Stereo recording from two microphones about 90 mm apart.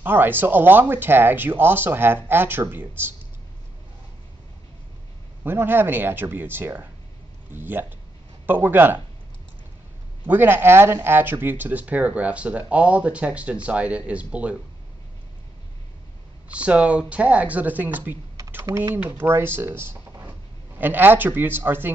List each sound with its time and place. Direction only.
0.0 s speech: 20° right (ahead or behind)
5.4 s speech: 25° right (ahead or behind)
10.2 s speech: 25° right (ahead or behind)
16.4 s speech: 15° right (ahead or behind)